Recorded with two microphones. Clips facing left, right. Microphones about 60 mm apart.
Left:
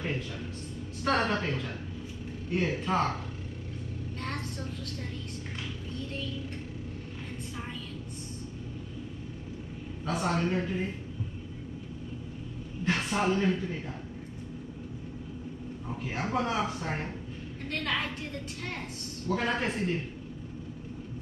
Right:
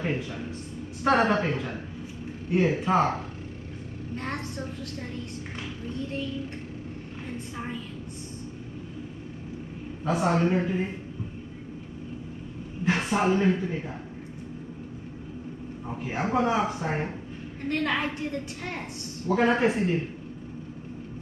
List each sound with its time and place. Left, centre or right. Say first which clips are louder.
0.0 s a woman's voice: right 4 dB; centre
5.9 s a woman's voice: right 7 dB; centre
10.0 s a woman's voice: right 5 dB; centre
12.8 s a woman's voice: right 4 dB; centre
15.9 s a woman's voice: right 4 dB; centre